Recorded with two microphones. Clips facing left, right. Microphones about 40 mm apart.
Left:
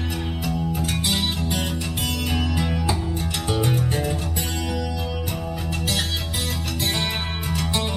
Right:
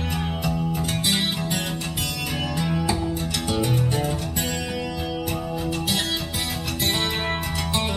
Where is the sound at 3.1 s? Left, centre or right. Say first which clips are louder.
Even; left.